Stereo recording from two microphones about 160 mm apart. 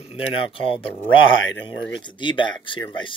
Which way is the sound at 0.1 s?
35° left (ahead or behind).